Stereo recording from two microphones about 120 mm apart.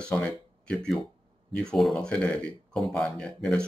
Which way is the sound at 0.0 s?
10° left (ahead or behind).